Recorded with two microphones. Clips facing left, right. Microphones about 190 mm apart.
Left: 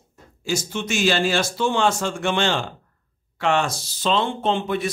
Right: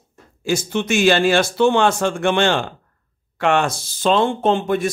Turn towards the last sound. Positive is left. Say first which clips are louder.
# right 5 dB
turn(degrees=-45)  # may be behind; listen again after turning